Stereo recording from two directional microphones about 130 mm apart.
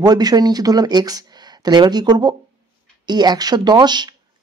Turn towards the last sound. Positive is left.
turn(degrees=-35)  # may be behind; listen again after turning